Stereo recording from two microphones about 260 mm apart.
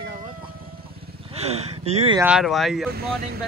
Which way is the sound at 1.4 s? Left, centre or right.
Right.